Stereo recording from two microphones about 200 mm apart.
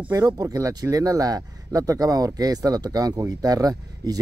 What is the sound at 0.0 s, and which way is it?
Speech, 20° right (ahead or behind).